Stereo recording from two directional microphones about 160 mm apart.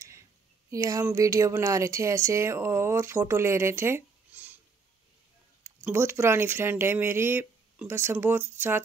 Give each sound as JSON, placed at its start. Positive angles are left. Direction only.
{"t": 0.7, "sound": "speech", "side_deg": -20}
{"t": 5.6, "sound": "speech", "side_deg": -15}